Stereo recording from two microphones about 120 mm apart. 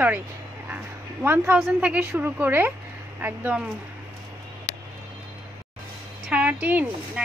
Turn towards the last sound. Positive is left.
turn(degrees=-15)  # may be behind; listen again after turning